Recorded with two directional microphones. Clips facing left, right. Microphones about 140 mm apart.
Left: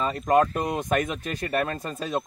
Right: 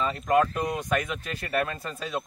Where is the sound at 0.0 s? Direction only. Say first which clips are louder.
Left 2 dB; 45° left (ahead or behind).